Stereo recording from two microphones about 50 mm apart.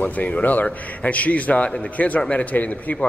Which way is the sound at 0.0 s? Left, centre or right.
Left.